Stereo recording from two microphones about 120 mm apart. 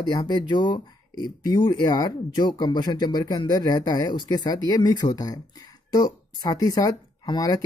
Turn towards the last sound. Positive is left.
turn(degrees=35)  # may be behind; listen again after turning